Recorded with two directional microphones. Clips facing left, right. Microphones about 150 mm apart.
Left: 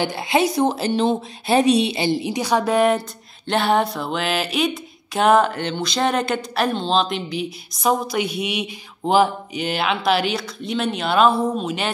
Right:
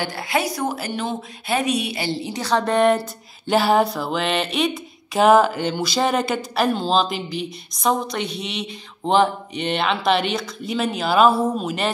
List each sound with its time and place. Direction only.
0.0 s a woman's voice: 20° left (ahead or behind); by 11.9 s centre (ahead or behind)